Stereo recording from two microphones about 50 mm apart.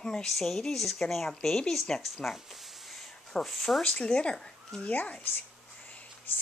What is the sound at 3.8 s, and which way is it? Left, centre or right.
Speech, left.